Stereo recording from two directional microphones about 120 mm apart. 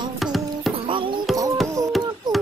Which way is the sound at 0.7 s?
45° right (ahead or behind).